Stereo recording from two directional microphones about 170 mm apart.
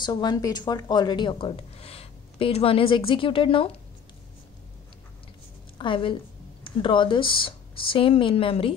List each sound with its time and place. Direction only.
0.0 s speech: 25° left (ahead or behind)
5.8 s a woman's voice: 30° left (ahead or behind)